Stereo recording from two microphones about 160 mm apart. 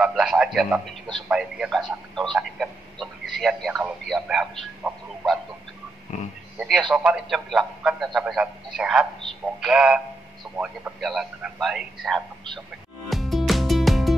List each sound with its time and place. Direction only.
0.0 s a man's voice: 5° right (ahead or behind)
4.1 s a sound: centre (ahead or behind)
6.1 s speech: 50° left (ahead or behind)
6.8 s a man's voice: centre (ahead or behind)
13.1 s music: centre (ahead or behind)